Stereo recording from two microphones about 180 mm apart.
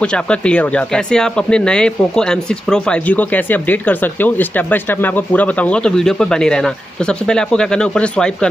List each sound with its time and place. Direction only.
0.0 s speech: 5° left (ahead or behind)